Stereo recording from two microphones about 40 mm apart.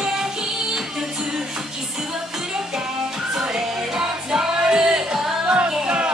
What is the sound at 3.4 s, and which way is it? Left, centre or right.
Music, centre.